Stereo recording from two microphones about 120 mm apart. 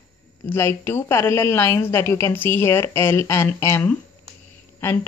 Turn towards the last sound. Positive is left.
turn(degrees=20)  # may be behind; listen again after turning